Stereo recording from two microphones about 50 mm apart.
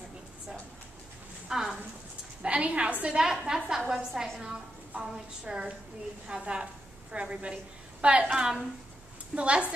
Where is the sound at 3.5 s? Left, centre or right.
Centre.